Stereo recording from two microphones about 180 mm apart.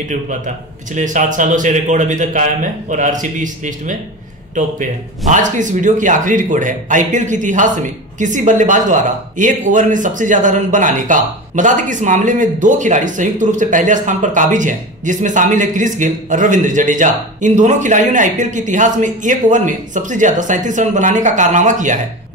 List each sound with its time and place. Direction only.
0.9 s a man's voice: 45° right (ahead or behind)